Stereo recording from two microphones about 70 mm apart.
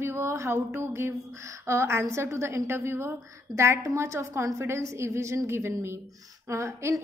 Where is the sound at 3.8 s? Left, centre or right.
Right.